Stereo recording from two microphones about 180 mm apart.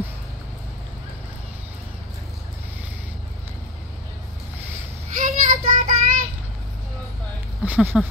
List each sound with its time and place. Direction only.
5.1 s child singing: 45° right (ahead or behind)
7.6 s speech: 10° right (ahead or behind)